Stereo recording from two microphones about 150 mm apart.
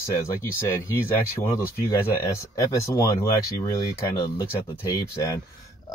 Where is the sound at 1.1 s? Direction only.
15° left (ahead or behind).